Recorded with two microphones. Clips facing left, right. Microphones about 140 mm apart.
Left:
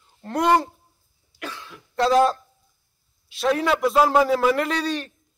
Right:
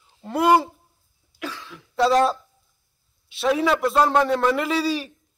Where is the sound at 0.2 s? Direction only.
5° right (ahead or behind).